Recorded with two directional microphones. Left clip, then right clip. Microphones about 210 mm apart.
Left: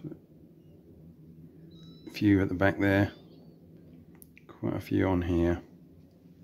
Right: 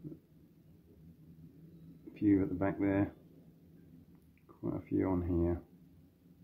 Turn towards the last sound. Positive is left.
turn(degrees=30)  # may be behind; listen again after turning